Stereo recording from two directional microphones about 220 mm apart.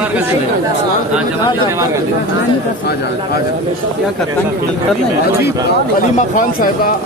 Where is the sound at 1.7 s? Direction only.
15° right (ahead or behind).